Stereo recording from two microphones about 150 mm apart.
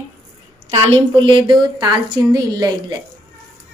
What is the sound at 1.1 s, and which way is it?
A woman's voice, 30° right (ahead or behind).